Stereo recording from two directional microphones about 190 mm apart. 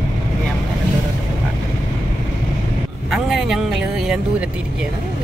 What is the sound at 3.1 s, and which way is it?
Vehicle, centre (ahead or behind).